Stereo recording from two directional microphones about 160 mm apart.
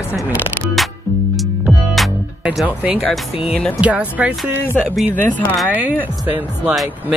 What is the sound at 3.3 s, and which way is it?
Speech, 40° left (ahead or behind).